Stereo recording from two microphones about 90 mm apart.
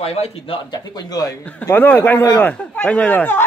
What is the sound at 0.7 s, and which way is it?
Speech, 45° left (ahead or behind).